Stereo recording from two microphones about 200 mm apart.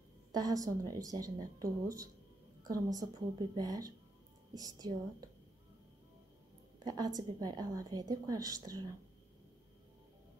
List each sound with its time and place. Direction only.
0.3 s a woman's voice: 20° right (ahead or behind)
6.8 s a woman's voice: 20° right (ahead or behind)